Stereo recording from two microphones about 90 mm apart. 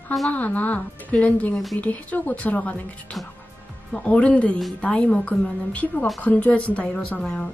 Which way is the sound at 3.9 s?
15° left (ahead or behind).